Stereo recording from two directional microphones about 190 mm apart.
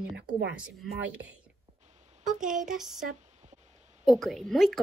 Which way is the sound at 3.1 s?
35° right (ahead or behind).